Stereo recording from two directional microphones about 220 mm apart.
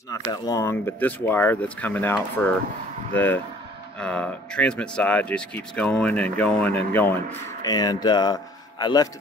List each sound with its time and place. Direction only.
0.1 s speech: 15° left (ahead or behind)
4.0 s speech: 5° left (ahead or behind)